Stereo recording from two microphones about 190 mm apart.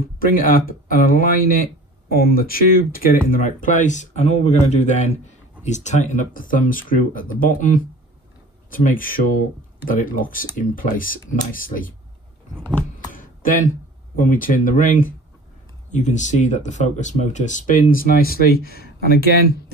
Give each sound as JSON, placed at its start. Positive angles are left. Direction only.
{"t": 0.2, "sound": "speech", "side_deg": 50}
{"t": 13.1, "sound": "a sound", "side_deg": 45}
{"t": 14.1, "sound": "speech", "side_deg": 45}